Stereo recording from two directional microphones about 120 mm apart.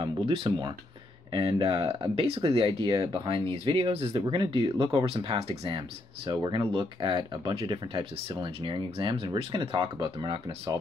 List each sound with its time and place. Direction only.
0.0 s speech: 45° right (ahead or behind)
6.3 s speech: 35° right (ahead or behind)